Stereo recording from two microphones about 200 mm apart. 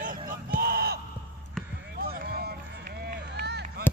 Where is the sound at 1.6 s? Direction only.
Centre (ahead or behind).